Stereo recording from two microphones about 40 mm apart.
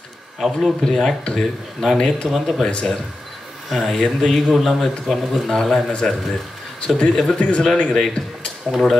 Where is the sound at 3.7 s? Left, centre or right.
Centre; by 7.6 s left.